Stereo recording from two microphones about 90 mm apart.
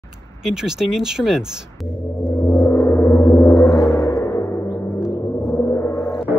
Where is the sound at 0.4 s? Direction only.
5° right (ahead or behind).